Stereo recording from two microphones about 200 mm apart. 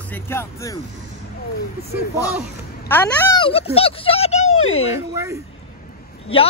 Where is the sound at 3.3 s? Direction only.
25° left (ahead or behind).